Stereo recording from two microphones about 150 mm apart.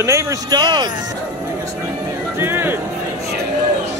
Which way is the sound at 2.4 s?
15° right (ahead or behind).